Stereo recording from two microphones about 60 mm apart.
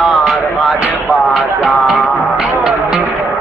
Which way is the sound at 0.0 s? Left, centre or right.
Centre.